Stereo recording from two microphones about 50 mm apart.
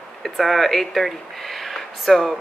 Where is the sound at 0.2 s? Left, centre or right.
Centre.